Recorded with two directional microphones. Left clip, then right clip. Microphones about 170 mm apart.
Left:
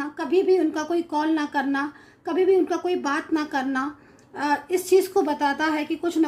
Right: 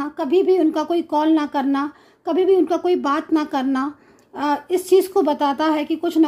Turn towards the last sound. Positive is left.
turn(degrees=-40)  # may be behind; listen again after turning